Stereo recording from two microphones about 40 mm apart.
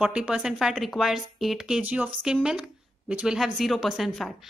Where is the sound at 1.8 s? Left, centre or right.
Right.